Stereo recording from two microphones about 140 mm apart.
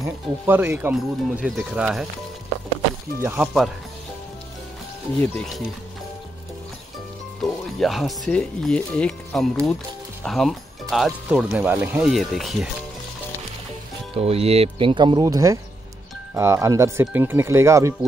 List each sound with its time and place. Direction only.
0.0 s speech: 15° right (ahead or behind)
0.9 s speech: 5° right (ahead or behind)
3.2 s speech: 15° right (ahead or behind)
5.2 s speech: 10° left (ahead or behind)
7.4 s speech: centre (ahead or behind)
12.1 s speech: centre (ahead or behind)
14.1 s speech: 45° right (ahead or behind); by 17.9 s 20° right (ahead or behind)